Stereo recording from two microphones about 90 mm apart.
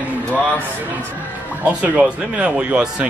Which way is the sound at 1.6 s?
15° right (ahead or behind).